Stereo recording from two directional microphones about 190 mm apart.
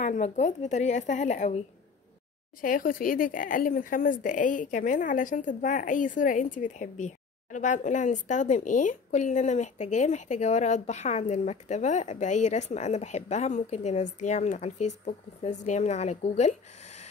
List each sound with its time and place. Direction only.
0.0 s speech: 40° left (ahead or behind)
2.6 s speech: 45° left (ahead or behind)